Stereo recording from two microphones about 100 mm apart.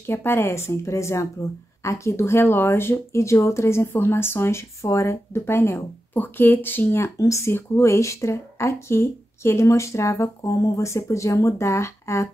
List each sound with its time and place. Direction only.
0.0 s speech: 25° left (ahead or behind)